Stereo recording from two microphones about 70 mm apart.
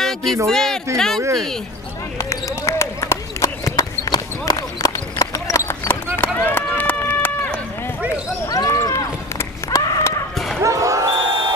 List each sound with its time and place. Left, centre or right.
0.0 s a sound: centre
0.5 s speech: centre
2.1 s basketball bounce: left
6.1 s run: left
8.5 s basketball bounce: left
9.7 s a sound: left
10.6 s basketball bounce: right
11.1 s music: right